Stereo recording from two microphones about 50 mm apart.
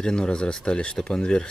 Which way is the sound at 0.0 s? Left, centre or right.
Centre.